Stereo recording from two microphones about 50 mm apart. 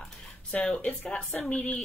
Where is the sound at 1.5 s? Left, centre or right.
Left.